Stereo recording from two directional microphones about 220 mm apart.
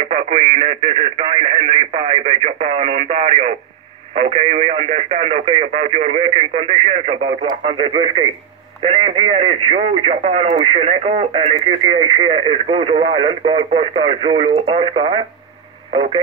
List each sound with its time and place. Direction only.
0.0 s speech: 25° right (ahead or behind)